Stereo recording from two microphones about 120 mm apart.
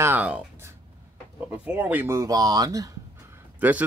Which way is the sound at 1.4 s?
10° right (ahead or behind).